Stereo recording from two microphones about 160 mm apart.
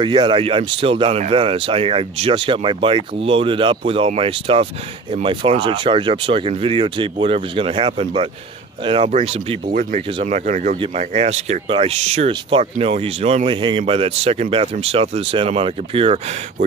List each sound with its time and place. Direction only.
0.0 s speech: 30° right (ahead or behind)
9.7 s speech: 55° right (ahead or behind); by 16.3 s 40° right (ahead or behind)